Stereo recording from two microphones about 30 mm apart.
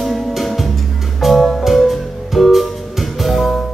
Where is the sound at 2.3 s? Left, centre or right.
Centre.